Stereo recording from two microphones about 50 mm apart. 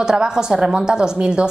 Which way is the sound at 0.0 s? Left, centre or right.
Centre.